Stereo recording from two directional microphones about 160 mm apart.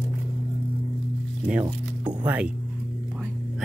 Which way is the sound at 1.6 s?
30° right (ahead or behind).